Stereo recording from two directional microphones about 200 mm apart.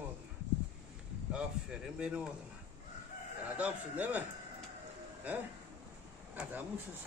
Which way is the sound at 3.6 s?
10° right (ahead or behind).